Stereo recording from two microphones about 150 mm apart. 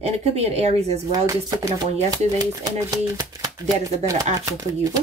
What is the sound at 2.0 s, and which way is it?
Speech, 25° right (ahead or behind).